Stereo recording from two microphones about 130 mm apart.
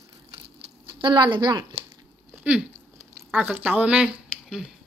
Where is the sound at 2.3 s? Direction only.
10° right (ahead or behind).